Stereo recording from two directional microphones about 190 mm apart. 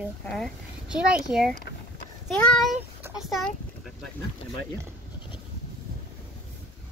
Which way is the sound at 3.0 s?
Centre (ahead or behind).